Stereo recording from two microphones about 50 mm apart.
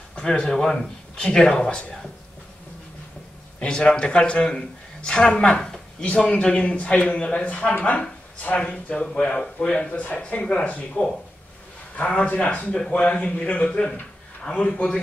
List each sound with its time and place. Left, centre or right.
0.1 s speech: centre
3.5 s a man's voice: centre
5.6 s a sound: centre
6.1 s a man's voice: centre
8.0 s a sound: left
8.5 s a man's voice: left
12.7 s a man's voice: left